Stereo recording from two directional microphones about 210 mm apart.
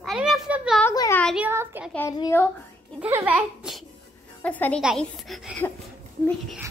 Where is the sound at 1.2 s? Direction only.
5° right (ahead or behind).